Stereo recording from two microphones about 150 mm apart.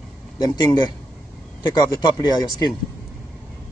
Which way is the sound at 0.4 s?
25° left (ahead or behind).